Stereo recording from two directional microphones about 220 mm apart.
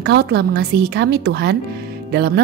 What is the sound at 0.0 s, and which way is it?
A woman's voice, 50° right (ahead or behind).